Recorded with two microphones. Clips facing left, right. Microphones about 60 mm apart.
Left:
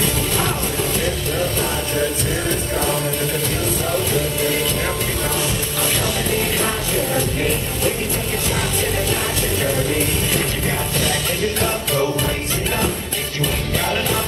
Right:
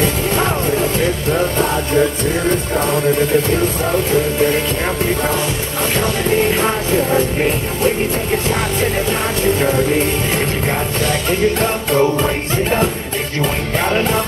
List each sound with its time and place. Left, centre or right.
6.6 s music: right
11.6 s music: right
13.4 s music: right